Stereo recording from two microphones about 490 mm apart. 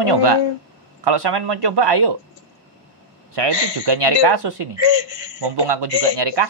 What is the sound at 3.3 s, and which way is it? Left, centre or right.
A man's voice, right.